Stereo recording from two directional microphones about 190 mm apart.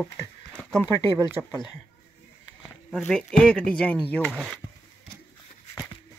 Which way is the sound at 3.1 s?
5° left (ahead or behind).